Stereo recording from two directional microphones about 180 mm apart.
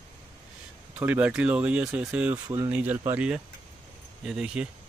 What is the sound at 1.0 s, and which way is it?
Speech, 10° right (ahead or behind).